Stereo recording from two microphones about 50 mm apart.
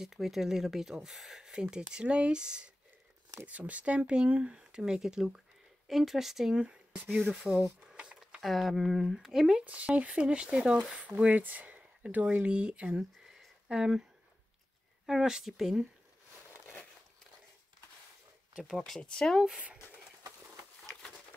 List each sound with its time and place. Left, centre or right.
0.0 s speech: centre
3.4 s speech: right; by 6.6 s centre
6.6 s speech: right
7.8 s a sound: centre
8.4 s speech: centre
9.7 s speech: right
15.0 s speech: centre
18.6 s speech: centre
18.9 s speech: centre